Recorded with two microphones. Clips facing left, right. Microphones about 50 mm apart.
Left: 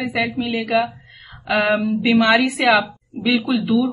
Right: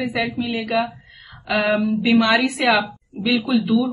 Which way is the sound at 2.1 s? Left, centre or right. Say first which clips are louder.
Left 2 dB; centre.